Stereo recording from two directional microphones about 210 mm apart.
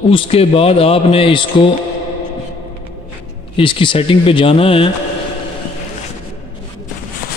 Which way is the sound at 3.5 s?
25° left (ahead or behind).